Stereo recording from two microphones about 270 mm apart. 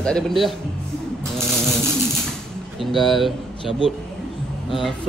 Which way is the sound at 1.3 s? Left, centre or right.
Centre.